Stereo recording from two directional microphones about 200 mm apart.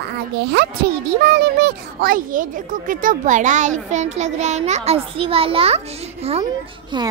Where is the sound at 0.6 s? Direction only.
55° right (ahead or behind); by 5.8 s 30° right (ahead or behind).